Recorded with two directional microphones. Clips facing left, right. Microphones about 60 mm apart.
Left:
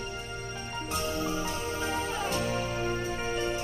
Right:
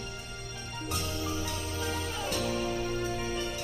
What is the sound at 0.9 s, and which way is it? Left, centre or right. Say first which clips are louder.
Music: left 4 dB; left.